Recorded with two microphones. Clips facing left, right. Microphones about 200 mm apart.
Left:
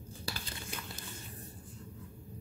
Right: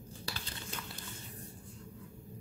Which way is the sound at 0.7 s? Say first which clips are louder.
Even; 10° left (ahead or behind).